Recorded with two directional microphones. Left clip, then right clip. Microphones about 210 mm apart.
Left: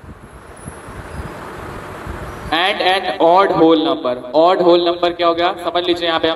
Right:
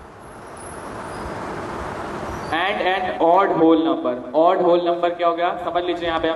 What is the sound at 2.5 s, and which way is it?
A man's voice, 50° left (ahead or behind).